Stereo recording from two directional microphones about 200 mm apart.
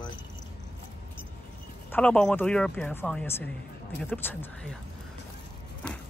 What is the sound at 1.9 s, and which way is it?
Speech, 5° left (ahead or behind).